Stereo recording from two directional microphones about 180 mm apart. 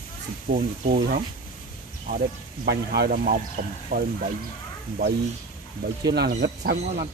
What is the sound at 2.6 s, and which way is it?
Speech, 65° right (ahead or behind).